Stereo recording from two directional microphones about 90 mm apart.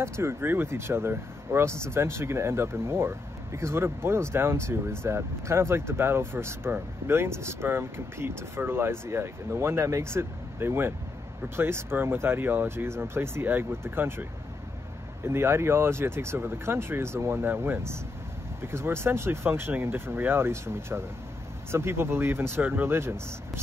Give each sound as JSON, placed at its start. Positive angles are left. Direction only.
{"t": 0.0, "sound": "speech", "side_deg": -30}
{"t": 15.2, "sound": "speech", "side_deg": -25}